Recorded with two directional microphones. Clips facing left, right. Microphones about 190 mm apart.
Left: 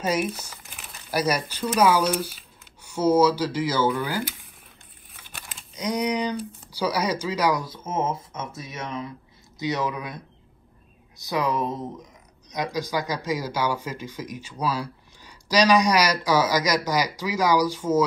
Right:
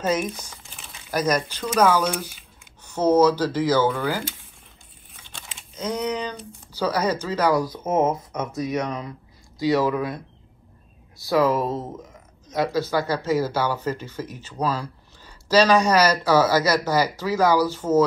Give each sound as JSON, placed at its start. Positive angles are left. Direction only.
{"t": 0.0, "sound": "speech", "side_deg": 10}
{"t": 5.2, "sound": "crumpling", "side_deg": 0}
{"t": 5.8, "sound": "speech", "side_deg": 10}
{"t": 8.1, "sound": "speech", "side_deg": 25}
{"t": 11.1, "sound": "speech", "side_deg": 20}
{"t": 12.5, "sound": "speech", "side_deg": 15}